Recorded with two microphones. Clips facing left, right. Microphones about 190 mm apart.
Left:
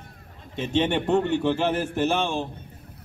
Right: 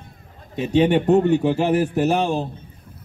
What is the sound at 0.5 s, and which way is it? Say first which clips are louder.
A man's voice: right 6 dB; 40° right (ahead or behind).